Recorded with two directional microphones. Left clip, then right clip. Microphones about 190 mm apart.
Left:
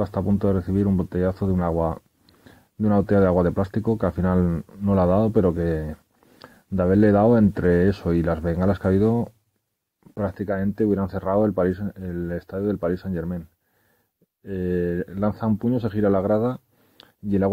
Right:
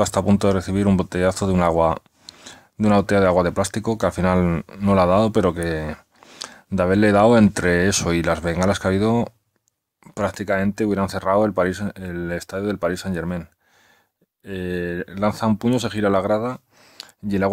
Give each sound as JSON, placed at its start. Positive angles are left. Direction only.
{"t": 0.4, "sound": "speech", "side_deg": -15}
{"t": 4.5, "sound": "speech", "side_deg": -30}
{"t": 4.9, "sound": "speech", "side_deg": -10}
{"t": 10.1, "sound": "speech", "side_deg": -10}
{"t": 14.4, "sound": "speech", "side_deg": -10}